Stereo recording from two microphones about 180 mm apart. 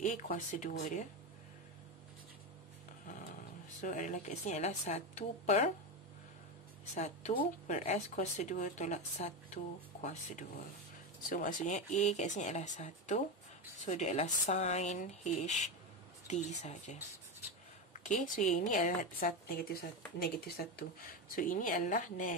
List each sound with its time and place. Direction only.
0.0 s speech: 45° left (ahead or behind)
3.8 s speech: 45° left (ahead or behind)
7.0 s speech: 40° left (ahead or behind)
11.2 s speech: 45° left (ahead or behind)